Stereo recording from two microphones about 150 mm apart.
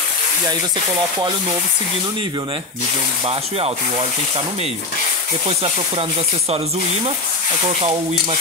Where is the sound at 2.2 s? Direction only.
35° right (ahead or behind).